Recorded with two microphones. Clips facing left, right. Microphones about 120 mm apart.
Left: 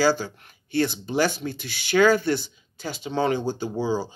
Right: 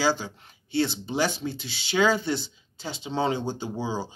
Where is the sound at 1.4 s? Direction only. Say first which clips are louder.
Left 1 dB; 55° left (ahead or behind).